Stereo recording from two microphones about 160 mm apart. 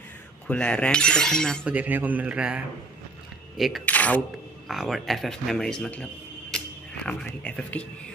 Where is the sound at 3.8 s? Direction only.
10° left (ahead or behind).